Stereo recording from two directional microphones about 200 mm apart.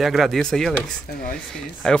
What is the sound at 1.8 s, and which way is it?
Speech, 5° left (ahead or behind).